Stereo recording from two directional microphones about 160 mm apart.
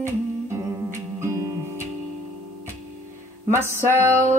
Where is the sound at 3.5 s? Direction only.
15° right (ahead or behind).